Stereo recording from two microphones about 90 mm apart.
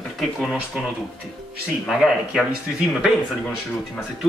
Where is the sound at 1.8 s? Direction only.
Centre (ahead or behind).